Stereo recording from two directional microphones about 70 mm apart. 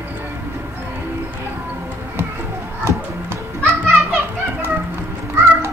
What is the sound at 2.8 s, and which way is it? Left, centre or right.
Children playing, right.